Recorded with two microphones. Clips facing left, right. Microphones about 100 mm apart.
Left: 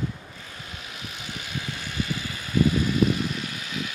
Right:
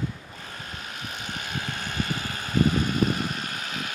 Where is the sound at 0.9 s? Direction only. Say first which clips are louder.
Right 2 dB; 45° right (ahead or behind).